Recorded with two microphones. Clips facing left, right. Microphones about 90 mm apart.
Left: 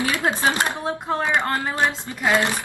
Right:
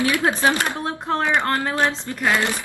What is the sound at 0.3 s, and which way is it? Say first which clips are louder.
Speech: right 1 dB; 20° left (ahead or behind).